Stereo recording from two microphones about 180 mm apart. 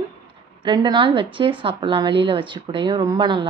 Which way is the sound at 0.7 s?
25° right (ahead or behind).